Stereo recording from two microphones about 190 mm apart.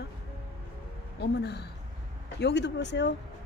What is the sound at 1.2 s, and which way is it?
Speech, 60° left (ahead or behind).